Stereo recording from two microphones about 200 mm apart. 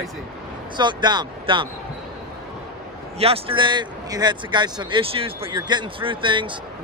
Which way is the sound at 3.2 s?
30° right (ahead or behind).